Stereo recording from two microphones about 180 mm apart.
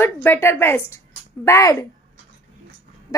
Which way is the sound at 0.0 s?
15° left (ahead or behind).